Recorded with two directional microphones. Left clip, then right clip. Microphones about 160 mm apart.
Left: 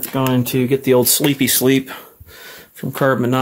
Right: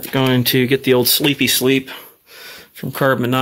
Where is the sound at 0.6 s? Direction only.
Centre (ahead or behind).